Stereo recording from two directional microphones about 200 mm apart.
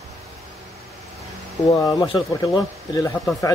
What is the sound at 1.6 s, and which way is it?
Speech, 15° left (ahead or behind).